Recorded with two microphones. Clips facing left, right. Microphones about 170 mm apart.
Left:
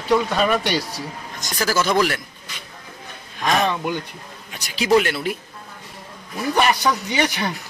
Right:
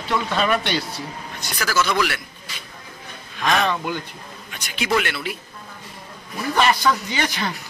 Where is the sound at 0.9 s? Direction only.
40° left (ahead or behind).